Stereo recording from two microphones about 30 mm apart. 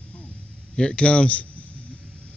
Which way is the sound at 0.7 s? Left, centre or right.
Left.